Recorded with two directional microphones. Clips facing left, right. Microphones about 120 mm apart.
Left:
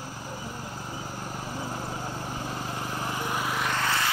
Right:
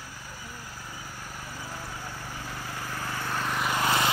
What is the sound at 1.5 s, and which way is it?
Vehicle, 30° left (ahead or behind).